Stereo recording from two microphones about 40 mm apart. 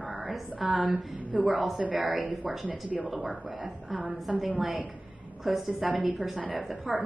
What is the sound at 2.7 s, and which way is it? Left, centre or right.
Speech, right.